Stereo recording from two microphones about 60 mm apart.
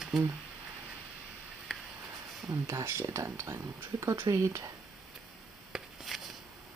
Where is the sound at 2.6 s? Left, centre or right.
Right.